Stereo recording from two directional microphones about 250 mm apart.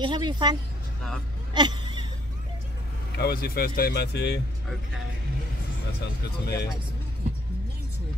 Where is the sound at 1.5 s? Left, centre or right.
Centre.